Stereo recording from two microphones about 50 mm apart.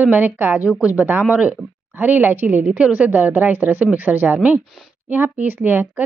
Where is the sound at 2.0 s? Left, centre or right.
Right.